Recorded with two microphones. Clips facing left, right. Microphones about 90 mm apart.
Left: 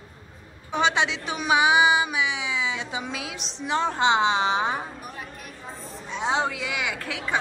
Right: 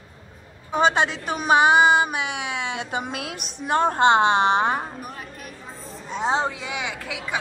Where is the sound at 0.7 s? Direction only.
45° right (ahead or behind).